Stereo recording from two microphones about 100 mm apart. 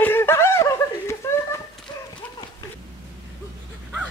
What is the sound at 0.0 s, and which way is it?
Snicker, 25° left (ahead or behind).